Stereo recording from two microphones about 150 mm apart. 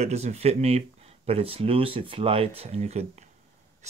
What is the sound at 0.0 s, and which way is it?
Speech, 45° right (ahead or behind).